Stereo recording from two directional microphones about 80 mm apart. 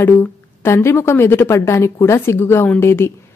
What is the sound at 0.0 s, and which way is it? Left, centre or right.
A woman's voice, left.